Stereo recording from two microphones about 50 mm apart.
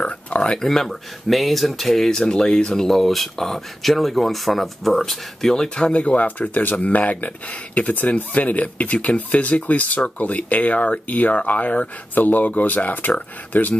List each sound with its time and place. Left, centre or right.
0.0 s speech: left
0.7 s speech: centre; by 13.7 s left